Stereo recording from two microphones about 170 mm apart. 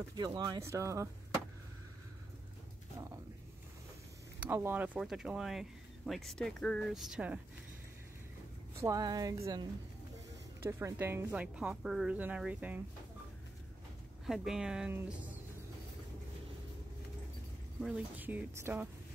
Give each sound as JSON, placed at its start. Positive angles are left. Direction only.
{"t": 0.1, "sound": "speech", "side_deg": -25}
{"t": 4.4, "sound": "speech", "side_deg": -15}
{"t": 8.7, "sound": "speech", "side_deg": -20}
{"t": 14.2, "sound": "speech", "side_deg": 0}
{"t": 17.8, "sound": "speech", "side_deg": -5}